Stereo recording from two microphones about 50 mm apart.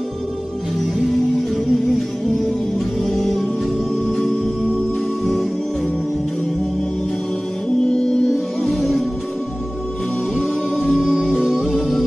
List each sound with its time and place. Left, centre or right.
0.9 s music: centre
7.8 s music: centre
10.3 s music: centre